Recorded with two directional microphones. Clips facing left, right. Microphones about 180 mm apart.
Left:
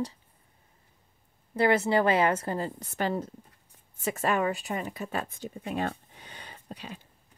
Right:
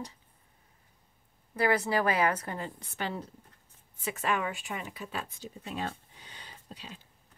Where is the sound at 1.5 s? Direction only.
25° left (ahead or behind); by 7.0 s 55° left (ahead or behind).